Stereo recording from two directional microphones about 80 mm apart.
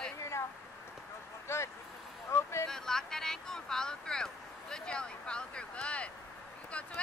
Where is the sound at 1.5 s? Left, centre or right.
Left.